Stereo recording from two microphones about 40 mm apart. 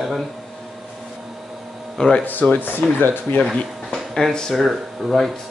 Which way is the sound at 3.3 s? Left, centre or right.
Left.